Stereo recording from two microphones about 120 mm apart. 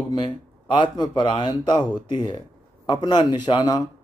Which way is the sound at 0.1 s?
40° left (ahead or behind).